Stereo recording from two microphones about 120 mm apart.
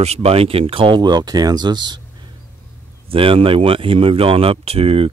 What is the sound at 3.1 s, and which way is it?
Speech, 50° right (ahead or behind).